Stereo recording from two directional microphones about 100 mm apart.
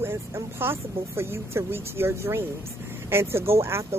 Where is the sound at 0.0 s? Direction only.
25° right (ahead or behind).